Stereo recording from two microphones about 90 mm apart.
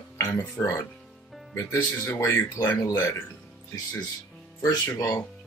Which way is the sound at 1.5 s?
35° left (ahead or behind).